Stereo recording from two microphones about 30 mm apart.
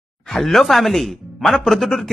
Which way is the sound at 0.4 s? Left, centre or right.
Centre.